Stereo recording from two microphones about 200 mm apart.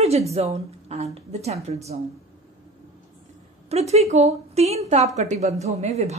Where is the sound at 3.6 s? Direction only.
30° right (ahead or behind).